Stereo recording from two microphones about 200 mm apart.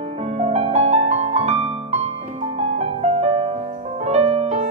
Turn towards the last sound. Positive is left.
turn(degrees=-30)  # may be behind; listen again after turning